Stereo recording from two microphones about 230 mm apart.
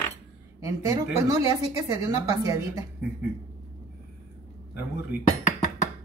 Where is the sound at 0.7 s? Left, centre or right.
Centre.